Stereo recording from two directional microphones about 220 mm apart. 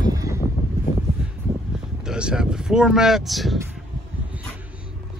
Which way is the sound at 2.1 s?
5° right (ahead or behind).